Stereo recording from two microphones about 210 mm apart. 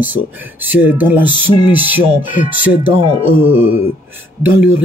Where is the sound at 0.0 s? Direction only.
10° right (ahead or behind).